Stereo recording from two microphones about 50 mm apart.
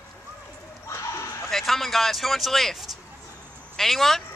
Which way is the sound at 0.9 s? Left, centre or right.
Left.